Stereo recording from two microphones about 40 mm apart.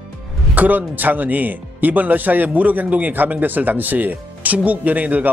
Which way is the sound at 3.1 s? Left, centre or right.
Right.